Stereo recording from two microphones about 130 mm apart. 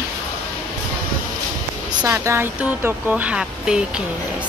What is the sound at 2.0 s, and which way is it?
Speech, 20° right (ahead or behind).